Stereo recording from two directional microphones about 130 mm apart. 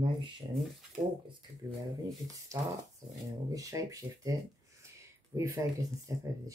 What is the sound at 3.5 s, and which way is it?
Speech, 25° right (ahead or behind).